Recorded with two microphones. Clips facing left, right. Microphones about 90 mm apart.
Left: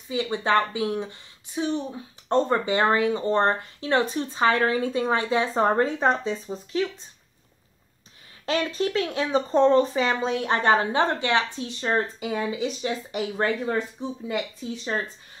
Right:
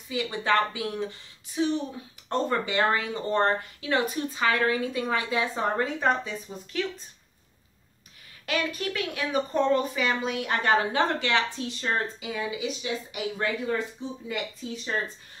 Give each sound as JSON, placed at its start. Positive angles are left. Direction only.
{"t": 0.1, "sound": "speech", "side_deg": 25}
{"t": 5.5, "sound": "speech", "side_deg": 40}
{"t": 5.9, "sound": "speech", "side_deg": 25}
{"t": 8.5, "sound": "speech", "side_deg": 30}
{"t": 12.2, "sound": "speech", "side_deg": 40}